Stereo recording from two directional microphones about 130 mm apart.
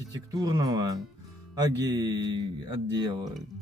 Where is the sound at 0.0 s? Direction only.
30° right (ahead or behind).